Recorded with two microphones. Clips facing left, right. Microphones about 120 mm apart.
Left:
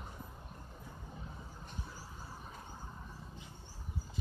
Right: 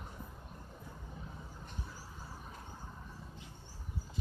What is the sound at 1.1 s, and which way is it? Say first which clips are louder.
Vehicle: even; 10° left (ahead or behind).